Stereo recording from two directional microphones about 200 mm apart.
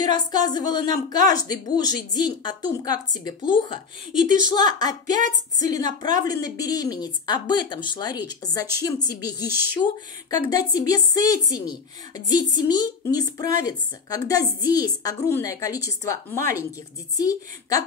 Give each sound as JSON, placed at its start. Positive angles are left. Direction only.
{"t": 0.0, "sound": "a woman's voice", "side_deg": 20}